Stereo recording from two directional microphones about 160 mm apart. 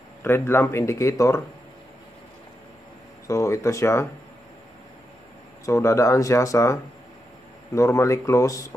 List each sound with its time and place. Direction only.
0.2 s speech: 15° left (ahead or behind)
3.3 s speech: 20° left (ahead or behind)
5.7 s speech: 20° left (ahead or behind)